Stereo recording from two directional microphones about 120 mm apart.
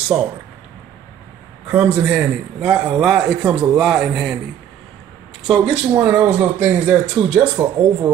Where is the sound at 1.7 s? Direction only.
10° right (ahead or behind).